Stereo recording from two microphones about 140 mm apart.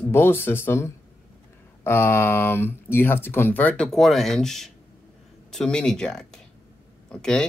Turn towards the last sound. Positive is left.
turn(degrees=5)  # may be behind; listen again after turning